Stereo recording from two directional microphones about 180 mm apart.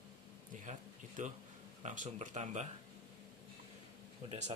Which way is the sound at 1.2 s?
45° right (ahead or behind).